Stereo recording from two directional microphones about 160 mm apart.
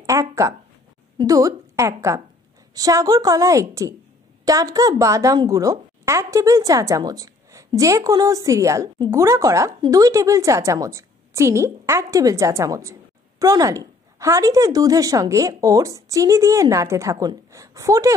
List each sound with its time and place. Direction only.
0.0 s a woman's voice: 20° right (ahead or behind)